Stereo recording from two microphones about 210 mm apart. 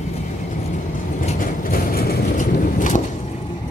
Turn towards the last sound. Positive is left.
turn(degrees=35)  # may be behind; listen again after turning